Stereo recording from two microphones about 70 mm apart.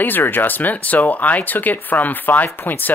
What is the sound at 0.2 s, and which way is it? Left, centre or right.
Speech, left.